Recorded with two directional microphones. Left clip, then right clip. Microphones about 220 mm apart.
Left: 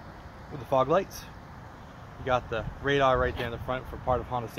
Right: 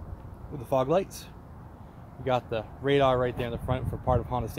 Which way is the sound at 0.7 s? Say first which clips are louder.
Left 1 dB; 10° right (ahead or behind).